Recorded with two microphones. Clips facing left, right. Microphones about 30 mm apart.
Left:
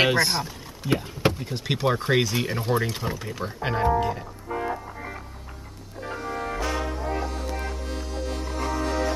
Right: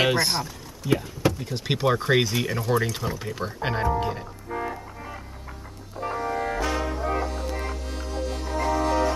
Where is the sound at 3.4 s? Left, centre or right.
Centre.